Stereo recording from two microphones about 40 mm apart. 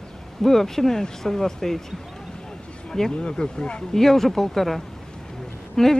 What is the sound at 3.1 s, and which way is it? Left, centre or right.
Speech, left.